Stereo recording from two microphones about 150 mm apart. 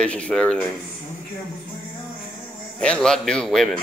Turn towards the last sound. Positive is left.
turn(degrees=5)  # may be behind; listen again after turning